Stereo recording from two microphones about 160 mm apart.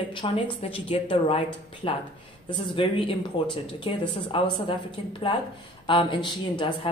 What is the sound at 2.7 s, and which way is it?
Speech, 30° left (ahead or behind).